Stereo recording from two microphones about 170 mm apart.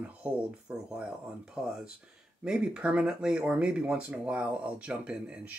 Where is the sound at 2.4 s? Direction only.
5° right (ahead or behind).